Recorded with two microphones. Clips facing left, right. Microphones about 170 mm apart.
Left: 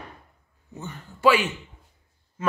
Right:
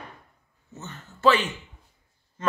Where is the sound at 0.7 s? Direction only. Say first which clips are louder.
Left 3 dB; 10° left (ahead or behind).